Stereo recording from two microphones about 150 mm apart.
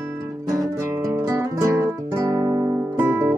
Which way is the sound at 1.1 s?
20° right (ahead or behind).